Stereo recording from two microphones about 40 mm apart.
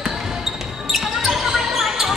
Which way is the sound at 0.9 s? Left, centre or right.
Centre.